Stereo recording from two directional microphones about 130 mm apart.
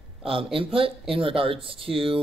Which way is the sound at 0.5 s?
45° right (ahead or behind).